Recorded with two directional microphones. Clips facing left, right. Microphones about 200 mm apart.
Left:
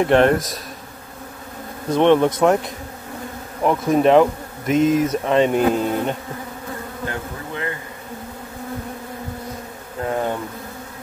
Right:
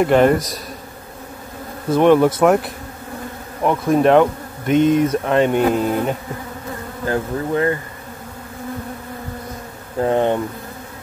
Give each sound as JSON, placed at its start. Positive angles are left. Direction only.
{"t": 0.0, "sound": "speech", "side_deg": -5}
{"t": 1.9, "sound": "speech", "side_deg": -5}
{"t": 7.1, "sound": "bee", "side_deg": -40}
{"t": 10.0, "sound": "speech", "side_deg": -25}